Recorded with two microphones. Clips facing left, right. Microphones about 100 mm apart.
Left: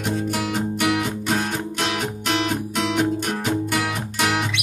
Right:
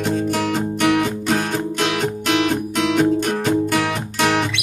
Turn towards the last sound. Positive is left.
turn(degrees=5)  # may be behind; listen again after turning